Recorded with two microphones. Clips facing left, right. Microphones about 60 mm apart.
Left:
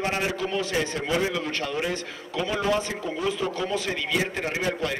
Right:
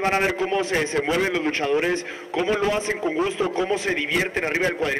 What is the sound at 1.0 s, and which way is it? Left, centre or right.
Speech, right.